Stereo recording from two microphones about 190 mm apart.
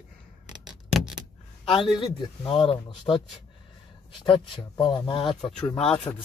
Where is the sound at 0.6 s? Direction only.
5° right (ahead or behind).